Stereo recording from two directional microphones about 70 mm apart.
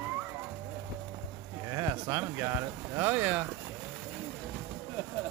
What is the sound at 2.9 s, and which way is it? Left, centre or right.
Speech, right.